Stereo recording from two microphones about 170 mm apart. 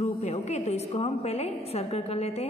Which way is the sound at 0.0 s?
40° left (ahead or behind).